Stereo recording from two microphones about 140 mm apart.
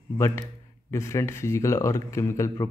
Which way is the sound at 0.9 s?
20° left (ahead or behind).